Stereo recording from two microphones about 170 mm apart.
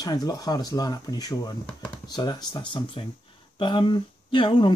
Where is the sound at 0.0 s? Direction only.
20° left (ahead or behind).